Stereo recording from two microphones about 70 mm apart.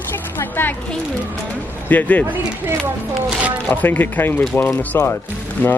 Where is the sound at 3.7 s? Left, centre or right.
Left.